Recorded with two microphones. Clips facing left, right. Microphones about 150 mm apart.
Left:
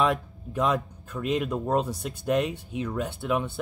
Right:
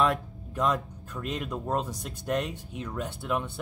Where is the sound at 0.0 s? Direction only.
Centre (ahead or behind).